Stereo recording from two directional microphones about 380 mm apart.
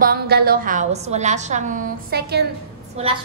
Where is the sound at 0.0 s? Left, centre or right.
Right.